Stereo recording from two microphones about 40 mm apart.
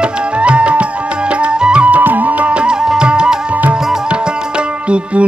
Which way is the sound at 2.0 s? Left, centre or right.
Right.